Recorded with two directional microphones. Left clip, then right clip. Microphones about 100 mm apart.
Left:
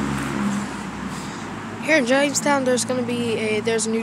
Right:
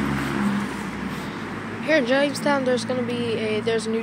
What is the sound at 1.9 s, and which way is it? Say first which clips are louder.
Speech: left 2 dB; 50° left (ahead or behind).